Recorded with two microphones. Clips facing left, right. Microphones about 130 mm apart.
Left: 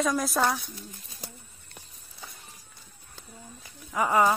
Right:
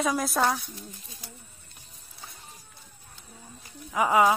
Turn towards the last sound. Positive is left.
turn(degrees=0)  # may be behind; listen again after turning